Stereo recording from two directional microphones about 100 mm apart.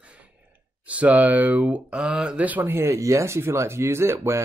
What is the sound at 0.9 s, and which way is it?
Speech, 15° right (ahead or behind).